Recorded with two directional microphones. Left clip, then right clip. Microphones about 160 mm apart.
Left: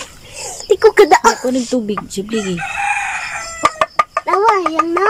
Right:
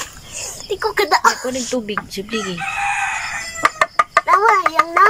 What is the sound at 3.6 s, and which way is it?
Chicken, 15° left (ahead or behind).